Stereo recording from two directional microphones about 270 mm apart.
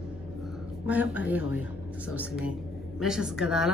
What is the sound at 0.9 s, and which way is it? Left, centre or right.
Speech, centre.